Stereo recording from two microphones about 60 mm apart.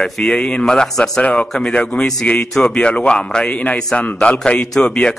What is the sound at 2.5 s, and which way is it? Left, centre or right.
Speech, centre.